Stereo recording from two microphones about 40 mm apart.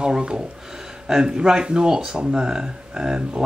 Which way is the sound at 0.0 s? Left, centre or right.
Right.